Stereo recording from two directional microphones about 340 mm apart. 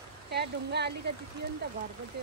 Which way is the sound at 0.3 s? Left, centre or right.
Right.